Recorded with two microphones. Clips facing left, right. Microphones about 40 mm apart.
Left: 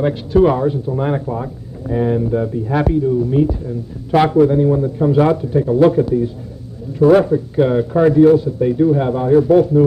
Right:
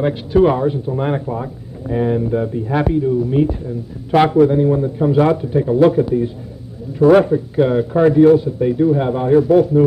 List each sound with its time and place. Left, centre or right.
0.0 s speech: centre
7.0 s a man's voice: right
7.5 s speech: centre
7.9 s speech: centre
9.1 s a man's voice: right
9.4 s speech: centre